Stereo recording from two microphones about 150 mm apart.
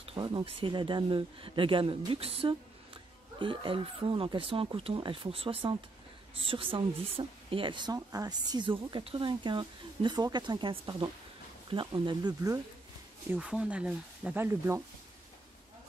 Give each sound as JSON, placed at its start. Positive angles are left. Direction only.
{"t": 0.0, "sound": "speech", "side_deg": -35}
{"t": 13.3, "sound": "speech", "side_deg": -5}